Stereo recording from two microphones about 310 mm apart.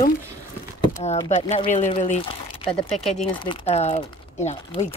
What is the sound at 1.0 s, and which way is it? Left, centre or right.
A woman's voice, centre.